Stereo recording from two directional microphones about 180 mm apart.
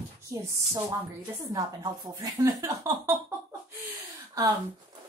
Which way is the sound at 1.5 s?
20° right (ahead or behind).